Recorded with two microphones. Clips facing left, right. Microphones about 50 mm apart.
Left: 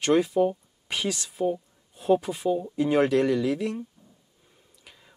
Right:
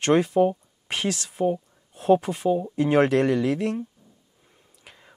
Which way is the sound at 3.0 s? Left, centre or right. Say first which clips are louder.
Right 2 dB; right.